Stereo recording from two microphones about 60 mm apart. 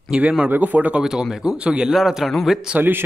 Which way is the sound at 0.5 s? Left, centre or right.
Right.